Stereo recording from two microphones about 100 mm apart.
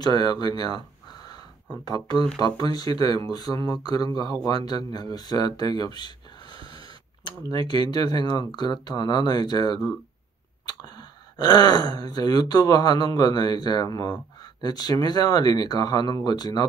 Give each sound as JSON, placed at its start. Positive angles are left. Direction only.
{"t": 0.0, "sound": "speech", "side_deg": 45}